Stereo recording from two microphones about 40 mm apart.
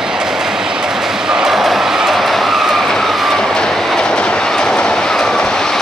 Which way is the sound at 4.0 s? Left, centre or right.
Centre.